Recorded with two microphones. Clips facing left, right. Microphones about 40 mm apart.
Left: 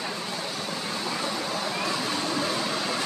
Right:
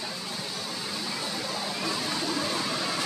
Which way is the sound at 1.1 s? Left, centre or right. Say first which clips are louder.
Left 3 dB; left.